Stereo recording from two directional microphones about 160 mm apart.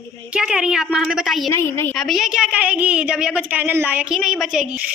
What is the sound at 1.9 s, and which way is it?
A woman's voice, centre (ahead or behind).